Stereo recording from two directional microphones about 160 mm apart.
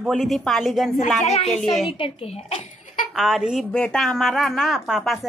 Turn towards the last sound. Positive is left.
turn(degrees=0)  # may be behind; listen again after turning